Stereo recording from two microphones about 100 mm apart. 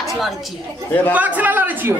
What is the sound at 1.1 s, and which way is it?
Speech, 15° right (ahead or behind).